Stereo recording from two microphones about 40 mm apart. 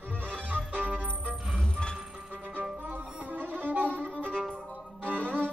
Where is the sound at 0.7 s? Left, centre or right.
Right.